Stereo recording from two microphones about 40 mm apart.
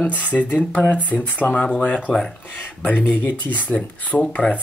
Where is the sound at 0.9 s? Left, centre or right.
Left.